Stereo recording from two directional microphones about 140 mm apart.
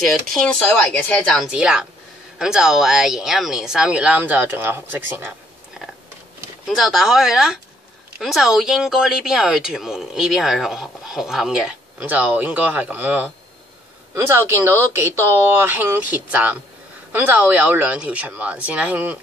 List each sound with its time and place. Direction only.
0.0 s speech: centre (ahead or behind)
1.5 s speech: 5° right (ahead or behind)
6.8 s speech: centre (ahead or behind)